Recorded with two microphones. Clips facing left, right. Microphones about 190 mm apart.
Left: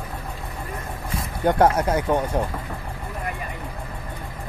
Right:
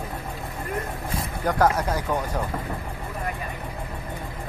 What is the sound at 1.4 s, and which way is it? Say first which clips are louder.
Speech: left 4 dB; 25° left (ahead or behind).